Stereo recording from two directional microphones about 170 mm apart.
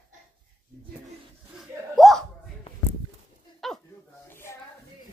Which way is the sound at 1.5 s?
Centre (ahead or behind).